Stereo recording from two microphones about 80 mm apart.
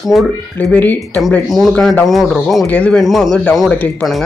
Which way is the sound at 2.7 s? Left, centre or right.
Centre.